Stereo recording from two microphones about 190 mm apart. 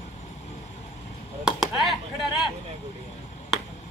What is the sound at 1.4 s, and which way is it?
Chop, centre (ahead or behind).